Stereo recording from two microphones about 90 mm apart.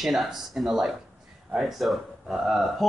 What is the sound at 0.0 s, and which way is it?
Speech, centre (ahead or behind).